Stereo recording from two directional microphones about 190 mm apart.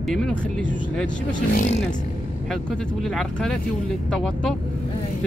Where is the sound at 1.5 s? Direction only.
40° left (ahead or behind).